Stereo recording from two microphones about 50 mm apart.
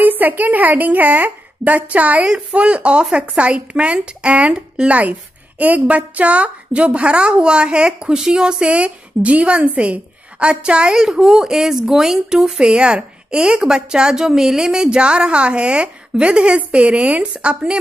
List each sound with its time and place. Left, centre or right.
0.0 s a woman's voice: right